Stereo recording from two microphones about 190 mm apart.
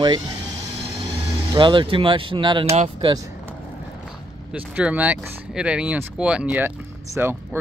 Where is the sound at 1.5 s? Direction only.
25° right (ahead or behind).